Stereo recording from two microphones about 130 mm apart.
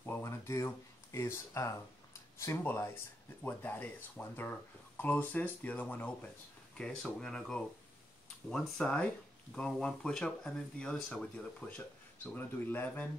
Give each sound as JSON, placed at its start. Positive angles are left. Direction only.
{"t": 0.0, "sound": "speech", "side_deg": 20}